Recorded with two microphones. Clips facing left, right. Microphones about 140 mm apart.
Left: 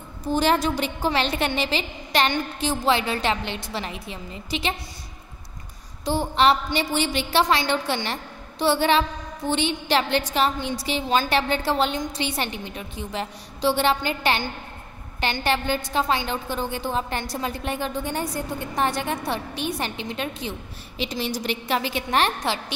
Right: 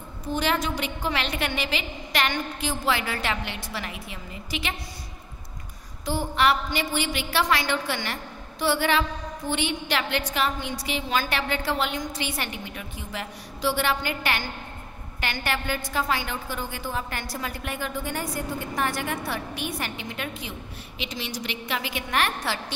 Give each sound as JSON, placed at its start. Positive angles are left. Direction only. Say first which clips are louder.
{"t": 0.3, "sound": "a woman's voice", "louder": "left 5 dB", "side_deg": 35}
{"t": 6.0, "sound": "a woman's voice", "louder": "left 3 dB", "side_deg": 25}